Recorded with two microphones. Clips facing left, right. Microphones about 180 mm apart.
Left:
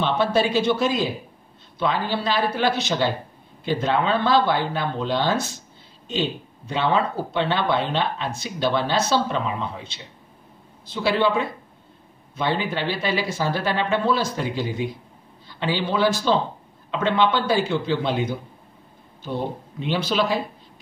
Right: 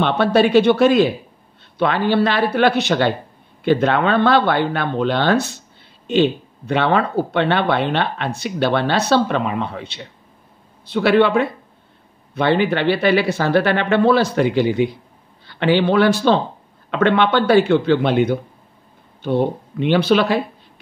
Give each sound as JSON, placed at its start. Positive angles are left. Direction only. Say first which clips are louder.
{"t": 0.0, "sound": "speech", "louder": "right 5 dB", "side_deg": -65}